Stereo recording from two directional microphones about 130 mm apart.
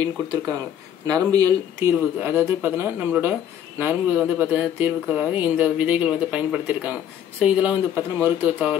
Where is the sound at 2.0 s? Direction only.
15° right (ahead or behind).